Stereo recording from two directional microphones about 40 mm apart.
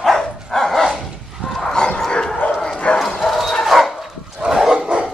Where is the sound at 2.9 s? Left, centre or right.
Left.